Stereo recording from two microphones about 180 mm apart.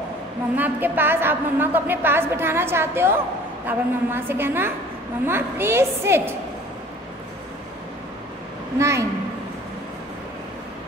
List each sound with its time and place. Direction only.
0.6 s a woman's voice: 10° right (ahead or behind)
8.7 s a woman's voice: 15° right (ahead or behind)